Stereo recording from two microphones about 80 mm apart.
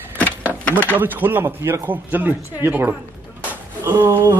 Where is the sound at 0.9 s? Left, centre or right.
Right.